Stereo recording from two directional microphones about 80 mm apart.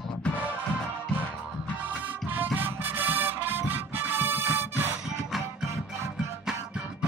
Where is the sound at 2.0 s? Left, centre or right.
Right.